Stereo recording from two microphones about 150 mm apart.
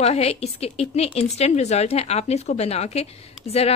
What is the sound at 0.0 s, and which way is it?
A woman's voice, 45° left (ahead or behind).